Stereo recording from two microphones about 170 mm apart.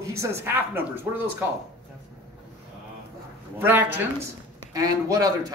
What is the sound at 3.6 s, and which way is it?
A man's voice, 10° right (ahead or behind).